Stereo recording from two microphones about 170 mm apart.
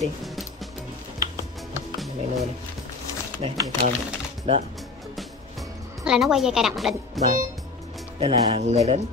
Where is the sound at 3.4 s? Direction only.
35° right (ahead or behind).